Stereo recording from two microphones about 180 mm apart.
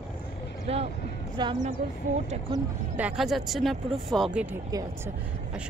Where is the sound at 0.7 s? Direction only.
35° right (ahead or behind).